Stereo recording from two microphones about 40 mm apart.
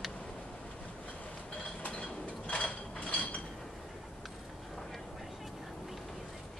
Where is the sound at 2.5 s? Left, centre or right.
Left.